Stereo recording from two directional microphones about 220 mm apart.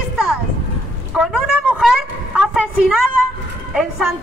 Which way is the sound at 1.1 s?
Centre (ahead or behind).